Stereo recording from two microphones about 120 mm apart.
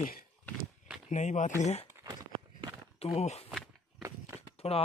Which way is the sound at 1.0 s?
85° left.